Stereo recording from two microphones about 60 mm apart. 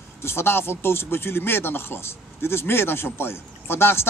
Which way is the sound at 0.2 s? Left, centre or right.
Left.